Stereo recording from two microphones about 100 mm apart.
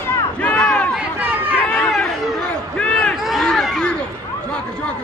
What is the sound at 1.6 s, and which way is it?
Chatter, 10° left (ahead or behind).